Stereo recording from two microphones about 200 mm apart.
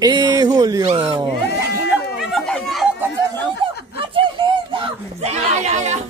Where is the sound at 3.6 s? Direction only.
25° right (ahead or behind).